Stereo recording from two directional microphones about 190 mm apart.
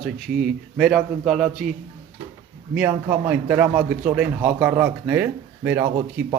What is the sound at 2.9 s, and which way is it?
Speech, 10° right (ahead or behind).